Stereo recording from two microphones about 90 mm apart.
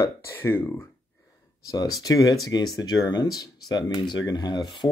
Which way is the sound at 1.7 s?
45° left (ahead or behind).